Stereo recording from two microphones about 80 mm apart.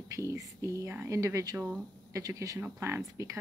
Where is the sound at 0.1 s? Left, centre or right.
Right.